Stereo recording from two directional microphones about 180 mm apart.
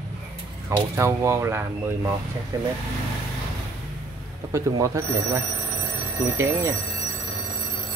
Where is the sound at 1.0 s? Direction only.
15° right (ahead or behind).